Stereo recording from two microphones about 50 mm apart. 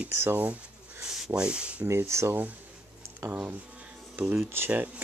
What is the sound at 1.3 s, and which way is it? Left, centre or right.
Speech, right.